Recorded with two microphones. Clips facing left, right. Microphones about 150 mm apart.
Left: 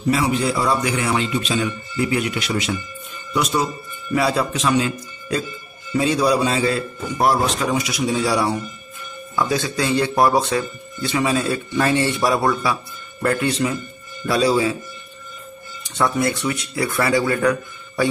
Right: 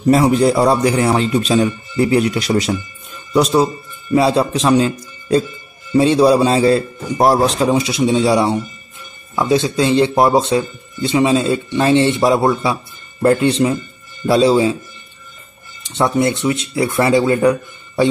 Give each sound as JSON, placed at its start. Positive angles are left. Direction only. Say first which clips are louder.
{"t": 0.1, "sound": "a man's voice", "louder": "right 8 dB", "side_deg": -40}
{"t": 15.9, "sound": "speech", "louder": "right 4 dB", "side_deg": -20}